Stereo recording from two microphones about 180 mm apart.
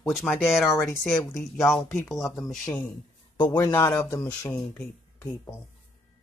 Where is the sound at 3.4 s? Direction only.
20° left (ahead or behind).